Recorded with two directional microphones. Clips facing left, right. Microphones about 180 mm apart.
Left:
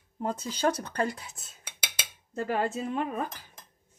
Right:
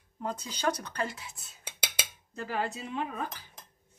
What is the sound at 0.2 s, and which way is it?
Speech, 50° left (ahead or behind).